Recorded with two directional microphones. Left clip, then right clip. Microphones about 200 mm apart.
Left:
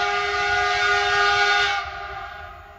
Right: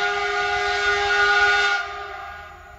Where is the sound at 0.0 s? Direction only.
20° left (ahead or behind).